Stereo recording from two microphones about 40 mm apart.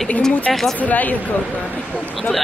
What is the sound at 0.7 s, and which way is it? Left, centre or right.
Speech, left.